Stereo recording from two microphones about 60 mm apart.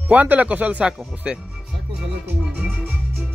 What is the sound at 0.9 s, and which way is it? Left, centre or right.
Speech, centre.